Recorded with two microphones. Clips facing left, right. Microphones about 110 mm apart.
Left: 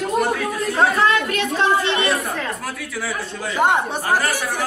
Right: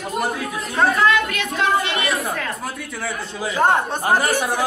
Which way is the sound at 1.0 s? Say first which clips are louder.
Even; 35° left (ahead or behind).